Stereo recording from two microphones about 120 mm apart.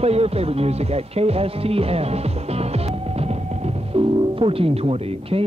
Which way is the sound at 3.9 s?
50° right (ahead or behind).